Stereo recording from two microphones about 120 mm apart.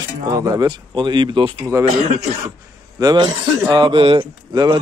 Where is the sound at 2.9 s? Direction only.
35° right (ahead or behind).